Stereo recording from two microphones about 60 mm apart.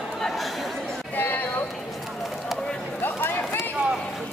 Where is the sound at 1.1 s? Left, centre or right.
Left.